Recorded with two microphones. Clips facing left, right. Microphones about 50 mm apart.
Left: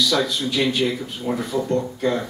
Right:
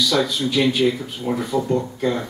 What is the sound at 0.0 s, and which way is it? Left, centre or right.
Speech, centre.